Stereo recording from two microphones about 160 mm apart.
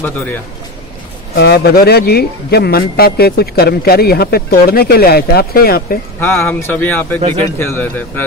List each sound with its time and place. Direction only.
1.3 s a man's voice: 90° left; by 5.9 s 70° left (ahead or behind)
6.1 s speech: 15° left (ahead or behind)
7.2 s speech: 45° right (ahead or behind)
7.5 s speech: 15° left (ahead or behind)